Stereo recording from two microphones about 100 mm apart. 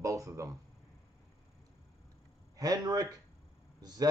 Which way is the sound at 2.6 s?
40° right (ahead or behind).